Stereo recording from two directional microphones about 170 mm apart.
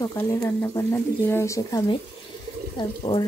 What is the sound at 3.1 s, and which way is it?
Speech, 25° left (ahead or behind).